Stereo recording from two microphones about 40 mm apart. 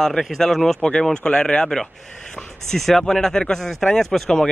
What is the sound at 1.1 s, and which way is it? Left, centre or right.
Speech, centre.